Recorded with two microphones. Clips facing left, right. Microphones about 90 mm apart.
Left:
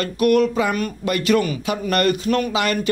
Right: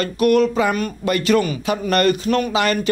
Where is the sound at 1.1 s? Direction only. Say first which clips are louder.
Right 1 dB; 35° right (ahead or behind).